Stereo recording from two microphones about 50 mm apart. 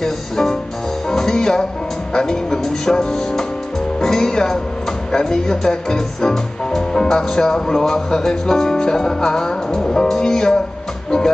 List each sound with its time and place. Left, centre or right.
0.0 s music: centre
2.1 s speech: centre
11.1 s music: centre